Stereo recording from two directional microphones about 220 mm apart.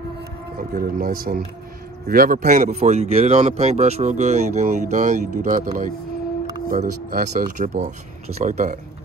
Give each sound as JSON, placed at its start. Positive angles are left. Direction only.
{"t": 0.6, "sound": "a man's voice", "side_deg": -40}